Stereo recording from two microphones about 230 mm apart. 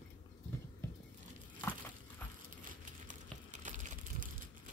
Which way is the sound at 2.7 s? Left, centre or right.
Right.